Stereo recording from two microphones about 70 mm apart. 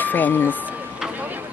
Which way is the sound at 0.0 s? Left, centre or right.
Left.